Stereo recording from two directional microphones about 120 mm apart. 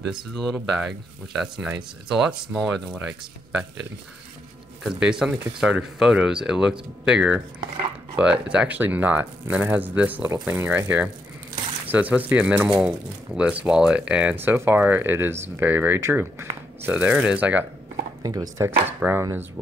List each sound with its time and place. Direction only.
0.0 s speech: centre (ahead or behind)
4.8 s speech: 5° right (ahead or behind)
18.2 s speech: 30° right (ahead or behind)
19.0 s speech: 10° right (ahead or behind)